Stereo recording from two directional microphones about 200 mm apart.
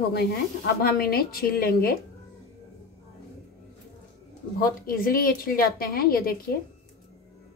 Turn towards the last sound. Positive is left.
turn(degrees=50)  # may be behind; listen again after turning